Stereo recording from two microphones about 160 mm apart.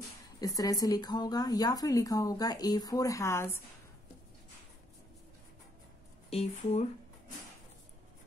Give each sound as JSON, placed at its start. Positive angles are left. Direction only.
{"t": 0.4, "sound": "speech", "side_deg": 20}
{"t": 6.3, "sound": "speech", "side_deg": 40}